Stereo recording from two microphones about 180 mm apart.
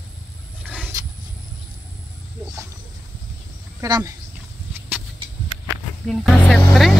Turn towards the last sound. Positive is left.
turn(degrees=0)  # may be behind; listen again after turning